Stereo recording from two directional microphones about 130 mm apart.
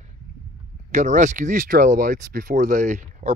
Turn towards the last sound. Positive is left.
turn(degrees=-70)  # may be behind; listen again after turning